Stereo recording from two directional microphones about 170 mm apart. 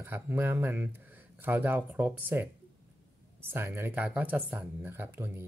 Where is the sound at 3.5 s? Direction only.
15° right (ahead or behind).